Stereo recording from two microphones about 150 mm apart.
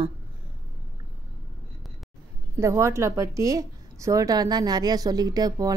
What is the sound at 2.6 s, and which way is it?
A woman's voice, 20° right (ahead or behind).